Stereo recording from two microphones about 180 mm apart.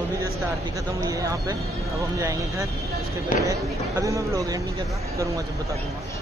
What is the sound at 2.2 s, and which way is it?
Speech, 15° right (ahead or behind).